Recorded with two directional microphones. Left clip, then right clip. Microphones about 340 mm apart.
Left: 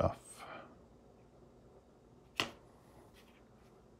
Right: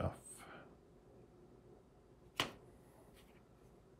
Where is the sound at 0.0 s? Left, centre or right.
Centre.